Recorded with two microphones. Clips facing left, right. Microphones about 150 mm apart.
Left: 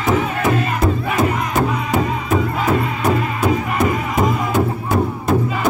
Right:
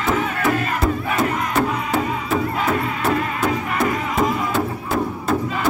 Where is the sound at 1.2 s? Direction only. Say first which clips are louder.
Left 2 dB; 15° left (ahead or behind).